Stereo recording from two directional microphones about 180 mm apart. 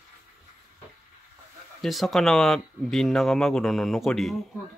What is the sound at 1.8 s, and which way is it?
Speech, centre (ahead or behind).